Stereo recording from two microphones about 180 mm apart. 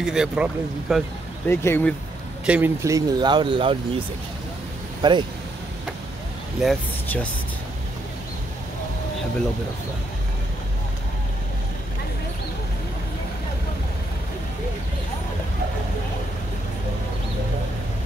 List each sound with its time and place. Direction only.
0.0 s speech: 5° right (ahead or behind)
1.5 s speech: 15° left (ahead or behind)
2.4 s speech: 10° right (ahead or behind); by 3.7 s 25° right (ahead or behind)
5.0 s speech: 25° right (ahead or behind)
6.6 s speech: 5° left (ahead or behind)